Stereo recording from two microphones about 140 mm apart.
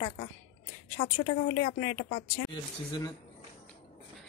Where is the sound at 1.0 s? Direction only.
35° left (ahead or behind).